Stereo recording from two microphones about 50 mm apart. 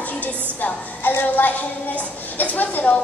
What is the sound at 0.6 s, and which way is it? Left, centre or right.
A woman's voice, left.